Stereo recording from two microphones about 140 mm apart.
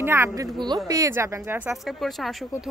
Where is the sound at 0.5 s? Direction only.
30° right (ahead or behind).